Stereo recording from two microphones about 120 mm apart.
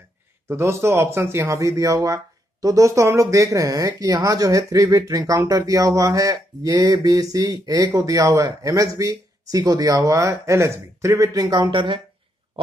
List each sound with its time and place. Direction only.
0.5 s speech: 20° right (ahead or behind)
11.7 s speech: 40° right (ahead or behind)